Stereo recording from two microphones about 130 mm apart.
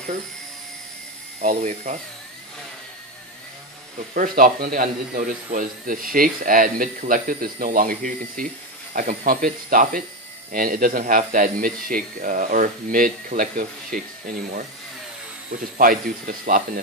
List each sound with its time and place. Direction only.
1.4 s speech: 70° right (ahead or behind)
4.1 s speech: 90° right
15.8 s speech: 90° right